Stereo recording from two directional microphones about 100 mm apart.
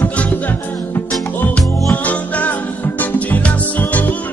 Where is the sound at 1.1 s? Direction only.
10° left (ahead or behind).